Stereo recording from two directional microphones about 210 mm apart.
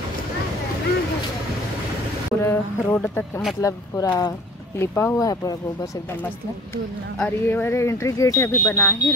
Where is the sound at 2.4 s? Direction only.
10° left (ahead or behind).